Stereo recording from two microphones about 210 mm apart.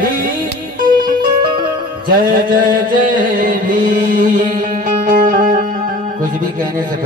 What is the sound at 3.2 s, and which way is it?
Music, 40° right (ahead or behind).